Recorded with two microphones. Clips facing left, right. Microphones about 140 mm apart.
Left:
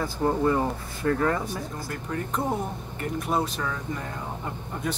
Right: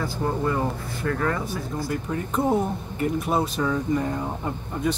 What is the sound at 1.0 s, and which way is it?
Speech, 25° left (ahead or behind).